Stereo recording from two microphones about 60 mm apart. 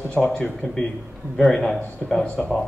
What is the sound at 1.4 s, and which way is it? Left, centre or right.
Speech, centre.